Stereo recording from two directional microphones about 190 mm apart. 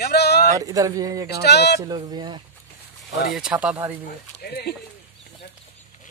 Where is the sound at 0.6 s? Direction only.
20° right (ahead or behind).